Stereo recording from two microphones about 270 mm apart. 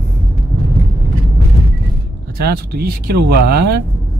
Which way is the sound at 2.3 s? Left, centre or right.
Right.